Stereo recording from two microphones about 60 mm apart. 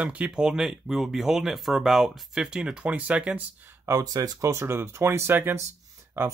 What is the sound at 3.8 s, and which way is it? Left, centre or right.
Speech, right.